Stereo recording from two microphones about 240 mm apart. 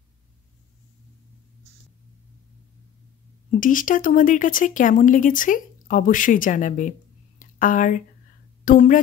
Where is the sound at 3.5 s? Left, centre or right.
Left.